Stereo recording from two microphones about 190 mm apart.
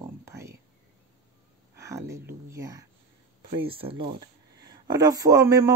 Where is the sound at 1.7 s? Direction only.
15° right (ahead or behind).